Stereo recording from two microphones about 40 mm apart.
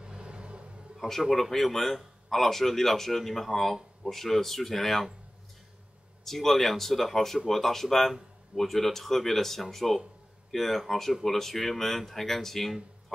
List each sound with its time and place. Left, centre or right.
0.0 s vehicle: right
0.9 s a man's voice: centre
6.2 s speech: centre